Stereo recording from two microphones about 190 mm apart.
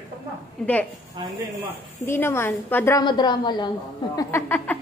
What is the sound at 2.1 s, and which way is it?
Speech, 10° left (ahead or behind).